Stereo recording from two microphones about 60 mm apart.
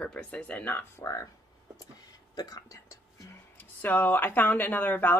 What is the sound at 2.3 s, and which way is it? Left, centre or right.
Speech, left.